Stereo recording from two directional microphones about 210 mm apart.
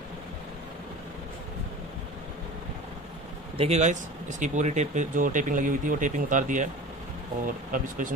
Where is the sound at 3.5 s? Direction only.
30° right (ahead or behind).